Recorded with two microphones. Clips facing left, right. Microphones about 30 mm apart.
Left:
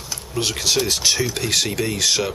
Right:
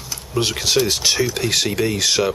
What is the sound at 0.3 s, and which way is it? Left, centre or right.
Speech, centre.